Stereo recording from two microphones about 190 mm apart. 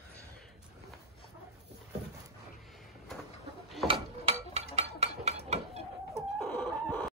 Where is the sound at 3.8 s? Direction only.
30° right (ahead or behind).